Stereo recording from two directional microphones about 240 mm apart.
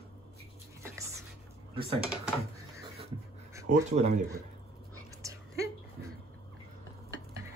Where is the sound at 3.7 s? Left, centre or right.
Right.